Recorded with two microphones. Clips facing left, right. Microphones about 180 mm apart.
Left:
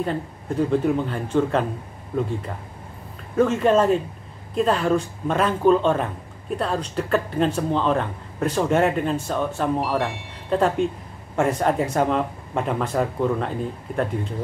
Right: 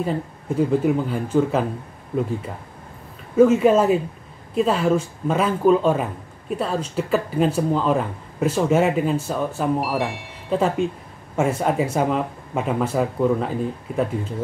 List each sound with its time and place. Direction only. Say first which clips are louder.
0.7 s speech: even; 5° right (ahead or behind)
3.3 s speech: right 3 dB; 5° right (ahead or behind)